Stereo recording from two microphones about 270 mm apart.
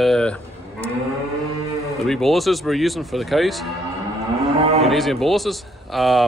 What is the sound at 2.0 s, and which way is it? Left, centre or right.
Speech, centre.